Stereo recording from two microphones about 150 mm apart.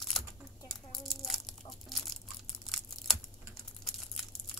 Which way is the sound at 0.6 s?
Centre (ahead or behind).